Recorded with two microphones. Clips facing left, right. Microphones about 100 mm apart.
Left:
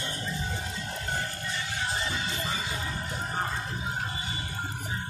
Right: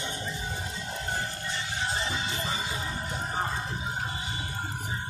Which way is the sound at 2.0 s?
25° right (ahead or behind).